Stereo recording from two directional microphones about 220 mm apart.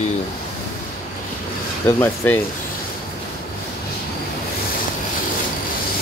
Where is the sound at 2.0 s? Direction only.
10° left (ahead or behind).